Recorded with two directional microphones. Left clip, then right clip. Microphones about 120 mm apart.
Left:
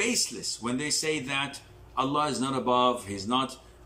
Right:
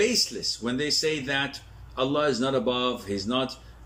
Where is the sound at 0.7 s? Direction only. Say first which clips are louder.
Right 3 dB; 35° left (ahead or behind).